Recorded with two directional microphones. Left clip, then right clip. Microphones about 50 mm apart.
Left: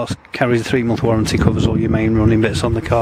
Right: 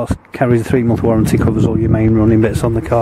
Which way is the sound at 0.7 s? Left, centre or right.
Left.